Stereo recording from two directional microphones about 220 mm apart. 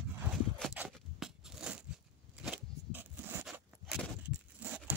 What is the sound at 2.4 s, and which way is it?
Zipper, 5° right (ahead or behind).